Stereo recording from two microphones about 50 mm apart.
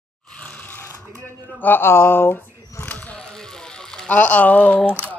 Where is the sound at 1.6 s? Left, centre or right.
Left.